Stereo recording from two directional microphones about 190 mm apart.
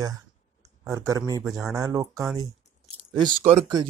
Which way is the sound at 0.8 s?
15° right (ahead or behind).